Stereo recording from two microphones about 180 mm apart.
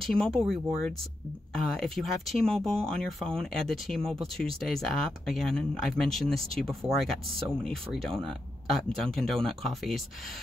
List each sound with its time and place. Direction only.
0.0 s speech: 5° left (ahead or behind)